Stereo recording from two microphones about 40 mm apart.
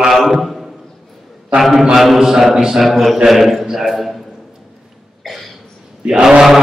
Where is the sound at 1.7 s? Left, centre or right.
Centre.